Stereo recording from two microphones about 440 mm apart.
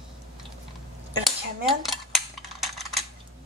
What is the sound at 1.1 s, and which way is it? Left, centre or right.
Dishes, centre.